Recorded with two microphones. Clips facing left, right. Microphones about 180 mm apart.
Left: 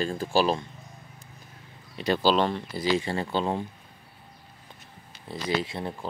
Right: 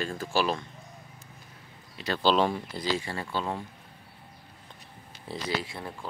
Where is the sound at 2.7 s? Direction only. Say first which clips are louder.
Left 5 dB; 15° left (ahead or behind).